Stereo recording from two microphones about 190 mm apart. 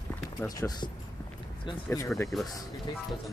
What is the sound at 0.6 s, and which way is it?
Speech, 20° left (ahead or behind).